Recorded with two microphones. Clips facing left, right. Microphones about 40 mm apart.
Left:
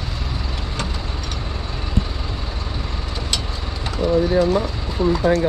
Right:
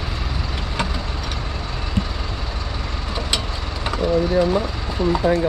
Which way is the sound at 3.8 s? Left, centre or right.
Centre.